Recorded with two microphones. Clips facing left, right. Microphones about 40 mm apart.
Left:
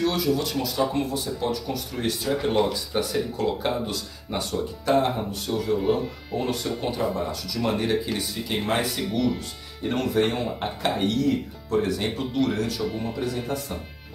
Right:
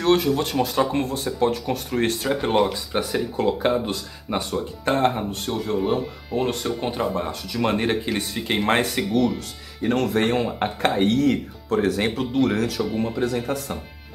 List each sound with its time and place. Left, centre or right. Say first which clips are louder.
0.0 s speech: right 4 dB; right
4.9 s speech: right 1 dB; right
6.8 s speech: right 2 dB; right
9.8 s speech: right 2 dB; right
11.2 s speech: right 3 dB; right
12.4 s speech: right 3 dB; right